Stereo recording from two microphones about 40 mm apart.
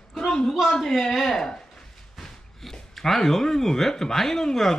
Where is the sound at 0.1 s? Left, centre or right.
Centre.